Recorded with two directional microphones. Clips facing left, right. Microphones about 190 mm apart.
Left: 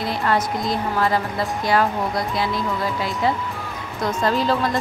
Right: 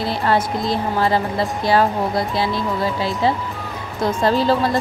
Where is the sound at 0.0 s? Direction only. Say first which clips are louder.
Right 2 dB; 30° right (ahead or behind).